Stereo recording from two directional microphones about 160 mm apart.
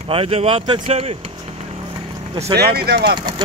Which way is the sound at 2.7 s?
80° right.